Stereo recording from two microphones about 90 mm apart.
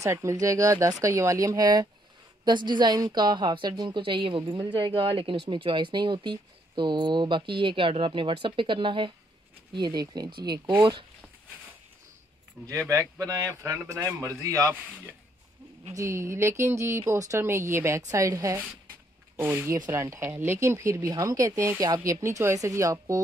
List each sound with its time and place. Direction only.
0.0 s speech: 35° right (ahead or behind); by 4.0 s 50° right (ahead or behind)
4.0 s a woman's voice: 70° right (ahead or behind)
9.8 s speech: 50° right (ahead or behind)
10.8 s speech: 65° right (ahead or behind)
12.6 s speech: 35° right (ahead or behind)
15.9 s speech: 35° right (ahead or behind)